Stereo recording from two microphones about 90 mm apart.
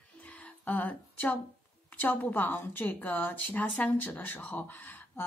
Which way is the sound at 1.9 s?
20° left (ahead or behind).